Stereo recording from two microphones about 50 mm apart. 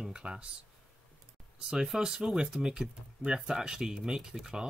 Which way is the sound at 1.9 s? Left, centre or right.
Centre.